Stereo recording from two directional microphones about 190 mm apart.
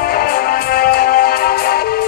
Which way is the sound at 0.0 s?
50° left (ahead or behind).